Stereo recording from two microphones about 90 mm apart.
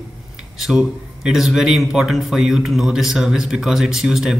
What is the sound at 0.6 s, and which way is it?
A man's voice, 5° right (ahead or behind).